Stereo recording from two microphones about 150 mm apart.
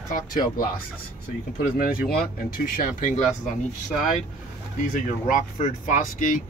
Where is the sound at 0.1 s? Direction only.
70° left (ahead or behind).